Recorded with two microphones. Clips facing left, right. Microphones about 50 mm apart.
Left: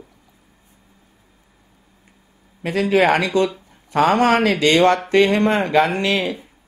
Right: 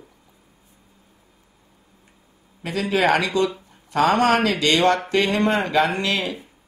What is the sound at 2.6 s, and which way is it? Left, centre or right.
Speech, left.